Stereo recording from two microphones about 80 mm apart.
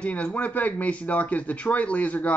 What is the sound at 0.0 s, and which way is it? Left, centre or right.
Speech, centre.